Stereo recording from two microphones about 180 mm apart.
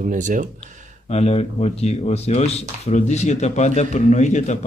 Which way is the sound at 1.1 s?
35° left (ahead or behind).